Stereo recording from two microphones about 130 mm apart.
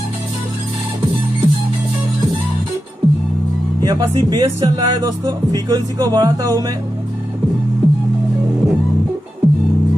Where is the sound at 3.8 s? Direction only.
30° right (ahead or behind).